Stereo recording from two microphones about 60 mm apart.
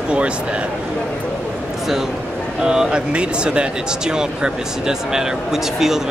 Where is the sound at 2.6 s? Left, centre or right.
Centre.